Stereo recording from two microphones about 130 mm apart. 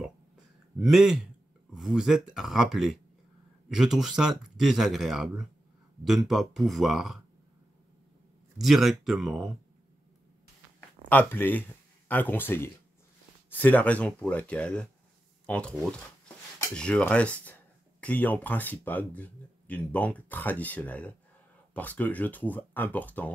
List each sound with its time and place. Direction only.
0.7 s speech: 5° right (ahead or behind)
8.5 s speech: centre (ahead or behind)
11.1 s speech: 15° left (ahead or behind)